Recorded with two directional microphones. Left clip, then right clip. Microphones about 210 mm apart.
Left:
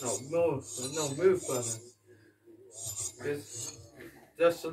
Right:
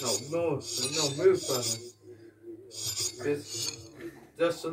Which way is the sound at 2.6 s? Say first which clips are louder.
Right 7 dB; 35° right (ahead or behind).